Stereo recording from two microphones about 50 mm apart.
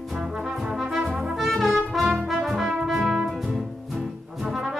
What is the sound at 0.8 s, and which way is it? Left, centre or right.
Brass instrument, centre.